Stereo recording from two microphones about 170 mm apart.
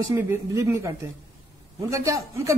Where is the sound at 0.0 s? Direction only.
15° right (ahead or behind).